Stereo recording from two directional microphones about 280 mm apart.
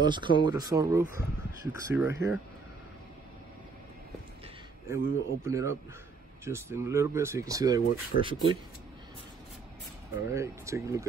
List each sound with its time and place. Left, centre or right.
0.0 s speech: centre
4.8 s speech: centre
8.1 s speech: left
10.3 s speech: centre